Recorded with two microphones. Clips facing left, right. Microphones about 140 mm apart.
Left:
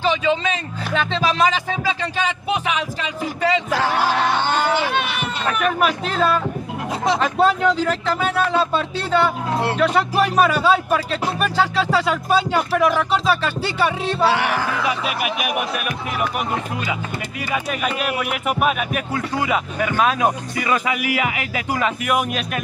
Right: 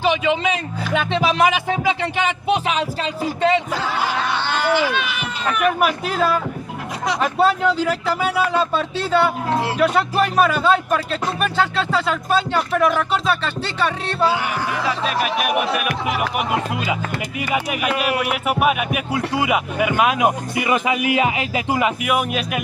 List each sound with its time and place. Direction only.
0.0 s speech: 15° right (ahead or behind)
3.7 s music: 80° left
4.4 s speech: 50° left (ahead or behind)
5.6 s speech: 5° right (ahead or behind)
14.2 s music: 80° left
14.9 s speech: 10° left (ahead or behind)
17.6 s speech: 5° right (ahead or behind)
22.0 s speech: 5° right (ahead or behind)